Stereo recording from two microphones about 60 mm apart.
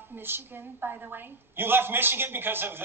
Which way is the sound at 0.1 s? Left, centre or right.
Right.